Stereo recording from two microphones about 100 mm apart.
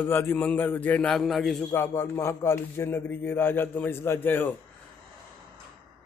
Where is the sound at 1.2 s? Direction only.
Centre (ahead or behind).